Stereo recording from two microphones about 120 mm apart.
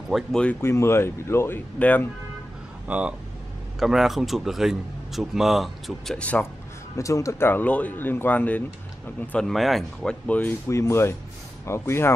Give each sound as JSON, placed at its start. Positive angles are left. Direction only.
{"t": 0.1, "sound": "speech", "side_deg": 5}
{"t": 0.6, "sound": "speech", "side_deg": 20}
{"t": 2.9, "sound": "a man's voice", "side_deg": -10}
{"t": 7.0, "sound": "speech", "side_deg": 25}
{"t": 9.5, "sound": "a man's voice", "side_deg": 0}
{"t": 10.2, "sound": "speech", "side_deg": 15}
{"t": 10.7, "sound": "speech", "side_deg": 25}